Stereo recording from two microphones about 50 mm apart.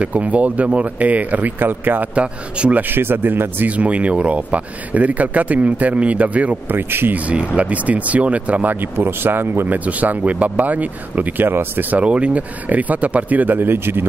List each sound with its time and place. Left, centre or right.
0.0 s speech: right
2.1 s speech: right
2.9 s speech: right
3.6 s speech: right
6.7 s speech: right
7.2 s speech: right
8.9 s speech: right
9.7 s speech: right
11.4 s speech: right
12.0 s speech: right